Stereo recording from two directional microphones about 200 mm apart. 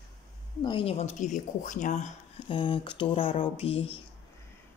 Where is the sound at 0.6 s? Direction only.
30° left (ahead or behind).